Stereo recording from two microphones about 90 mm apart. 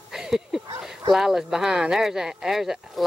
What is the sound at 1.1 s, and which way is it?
Speech, 5° right (ahead or behind).